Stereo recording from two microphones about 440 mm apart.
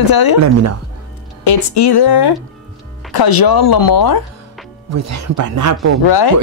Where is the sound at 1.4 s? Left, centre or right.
Left.